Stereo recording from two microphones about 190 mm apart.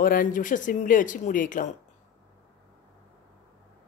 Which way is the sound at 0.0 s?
45° left (ahead or behind).